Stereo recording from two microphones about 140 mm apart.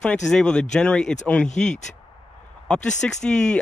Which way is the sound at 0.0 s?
5° left (ahead or behind).